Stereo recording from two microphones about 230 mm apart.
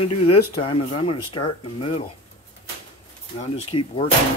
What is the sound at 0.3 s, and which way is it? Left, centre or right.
Speech, left.